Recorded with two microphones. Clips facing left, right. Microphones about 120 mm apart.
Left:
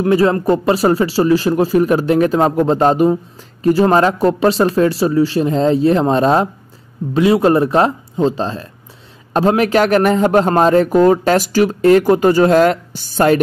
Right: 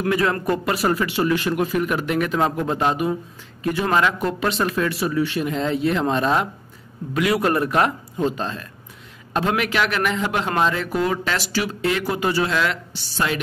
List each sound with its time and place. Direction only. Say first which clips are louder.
0.0 s a man's voice: left 8 dB; 30° left (ahead or behind); by 13.4 s 45° left (ahead or behind)